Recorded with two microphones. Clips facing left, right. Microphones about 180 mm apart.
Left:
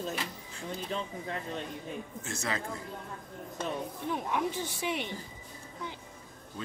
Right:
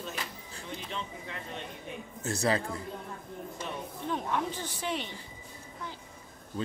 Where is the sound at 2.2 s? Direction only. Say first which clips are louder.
Right 9 dB; 35° right (ahead or behind).